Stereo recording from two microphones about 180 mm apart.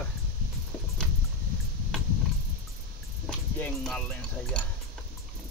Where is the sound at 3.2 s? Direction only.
5° left (ahead or behind).